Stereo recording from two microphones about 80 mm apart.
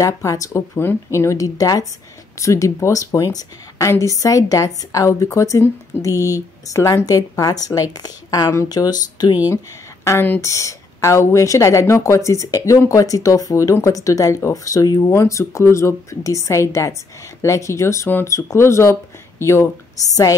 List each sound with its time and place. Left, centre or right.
0.0 s speech: left
0.7 s speech: left
10.0 s speech: left
10.4 s speech: left